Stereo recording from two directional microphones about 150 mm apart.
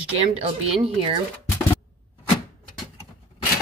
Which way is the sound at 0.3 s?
40° right (ahead or behind).